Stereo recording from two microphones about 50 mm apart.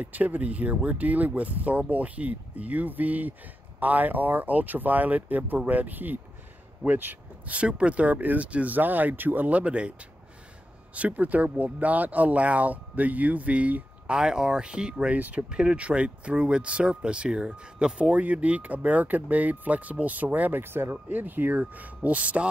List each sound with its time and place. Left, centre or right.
0.0 s speech: right
7.5 s speech: right
11.0 s speech: right
14.1 s speech: centre
15.1 s speech: right
15.5 s speech: centre
18.1 s speech: right
20.6 s speech: right
21.1 s speech: right